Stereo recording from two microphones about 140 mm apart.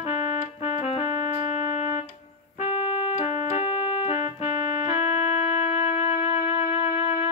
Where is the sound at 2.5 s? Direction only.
55° left (ahead or behind).